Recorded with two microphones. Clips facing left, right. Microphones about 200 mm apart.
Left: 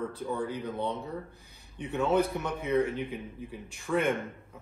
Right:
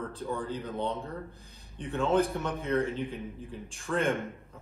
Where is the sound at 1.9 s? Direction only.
10° left (ahead or behind).